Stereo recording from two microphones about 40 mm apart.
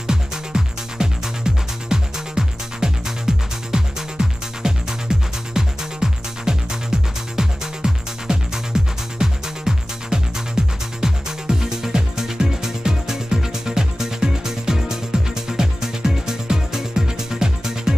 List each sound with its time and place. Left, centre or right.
0.0 s music: centre